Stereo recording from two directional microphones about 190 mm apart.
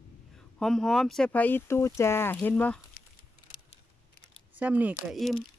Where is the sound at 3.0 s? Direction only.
45° left (ahead or behind).